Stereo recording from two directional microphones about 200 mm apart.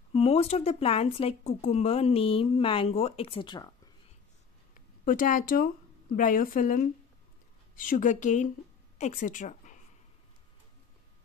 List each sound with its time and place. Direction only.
0.1 s speech: 30° left (ahead or behind)
5.0 s a woman's voice: 40° left (ahead or behind)